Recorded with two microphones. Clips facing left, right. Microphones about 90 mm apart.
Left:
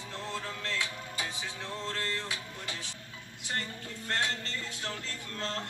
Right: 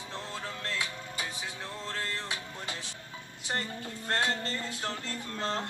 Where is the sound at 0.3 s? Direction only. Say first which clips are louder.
Left 2 dB; 15° right (ahead or behind).